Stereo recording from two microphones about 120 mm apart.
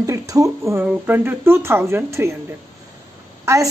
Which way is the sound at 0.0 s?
30° right (ahead or behind).